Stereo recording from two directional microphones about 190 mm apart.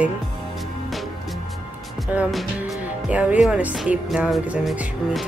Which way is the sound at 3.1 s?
5° right (ahead or behind).